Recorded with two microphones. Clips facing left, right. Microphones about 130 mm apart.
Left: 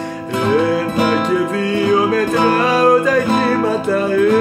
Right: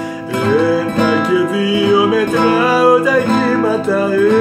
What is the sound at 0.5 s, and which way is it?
Music, 5° right (ahead or behind).